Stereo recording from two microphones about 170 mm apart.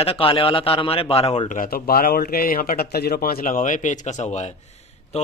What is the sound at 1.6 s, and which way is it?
A man's voice, 60° left (ahead or behind).